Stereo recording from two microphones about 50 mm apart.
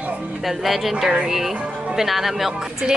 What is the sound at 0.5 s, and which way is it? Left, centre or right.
Speech, centre.